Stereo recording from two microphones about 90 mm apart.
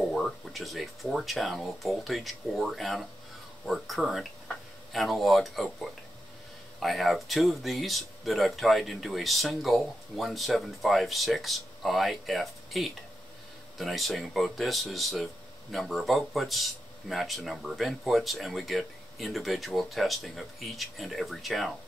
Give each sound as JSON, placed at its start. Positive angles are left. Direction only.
{"t": 0.1, "sound": "speech", "side_deg": 0}